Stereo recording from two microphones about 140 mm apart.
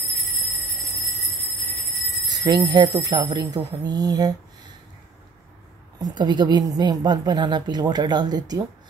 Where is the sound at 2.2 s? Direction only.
30° right (ahead or behind).